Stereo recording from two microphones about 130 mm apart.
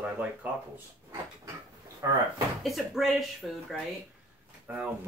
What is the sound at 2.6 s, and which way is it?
Speech, centre (ahead or behind).